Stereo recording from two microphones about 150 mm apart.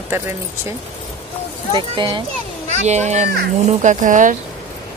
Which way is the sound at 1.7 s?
30° right (ahead or behind).